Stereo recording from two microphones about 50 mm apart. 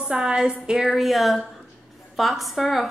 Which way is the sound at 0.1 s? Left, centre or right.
Centre.